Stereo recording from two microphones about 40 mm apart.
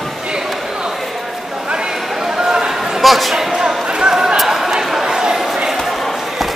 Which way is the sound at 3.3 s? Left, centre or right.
Centre.